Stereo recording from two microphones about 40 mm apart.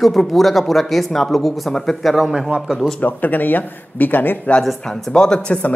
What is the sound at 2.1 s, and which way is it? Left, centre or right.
Speech, centre.